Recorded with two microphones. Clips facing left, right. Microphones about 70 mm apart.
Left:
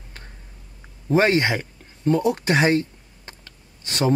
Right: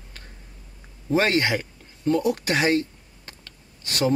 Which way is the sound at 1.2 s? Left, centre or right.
Left.